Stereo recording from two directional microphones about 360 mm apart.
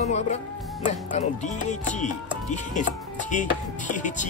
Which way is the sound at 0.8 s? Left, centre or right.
Centre.